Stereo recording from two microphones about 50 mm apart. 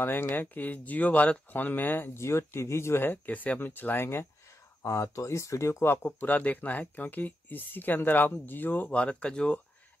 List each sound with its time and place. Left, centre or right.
0.0 s speech: left
2.1 s speech: left
3.3 s speech: left
3.5 s speech: left
6.1 s speech: left
8.8 s speech: left